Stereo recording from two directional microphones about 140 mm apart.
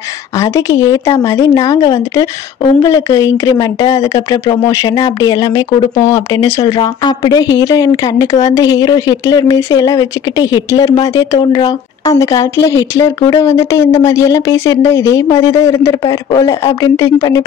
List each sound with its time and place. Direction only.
0.4 s speech: 25° left (ahead or behind)